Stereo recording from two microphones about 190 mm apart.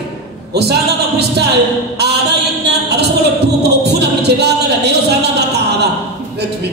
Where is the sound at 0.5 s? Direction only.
60° right (ahead or behind).